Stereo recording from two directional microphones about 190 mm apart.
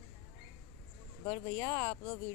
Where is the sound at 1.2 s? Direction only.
20° left (ahead or behind).